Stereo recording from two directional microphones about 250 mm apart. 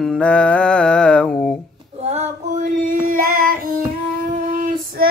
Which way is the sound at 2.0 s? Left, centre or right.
Right.